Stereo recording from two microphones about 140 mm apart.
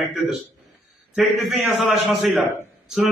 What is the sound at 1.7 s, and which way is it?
Speech, centre (ahead or behind).